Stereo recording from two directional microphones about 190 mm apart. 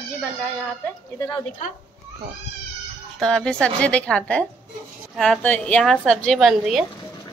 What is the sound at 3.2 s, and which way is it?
A woman's voice, 5° left (ahead or behind).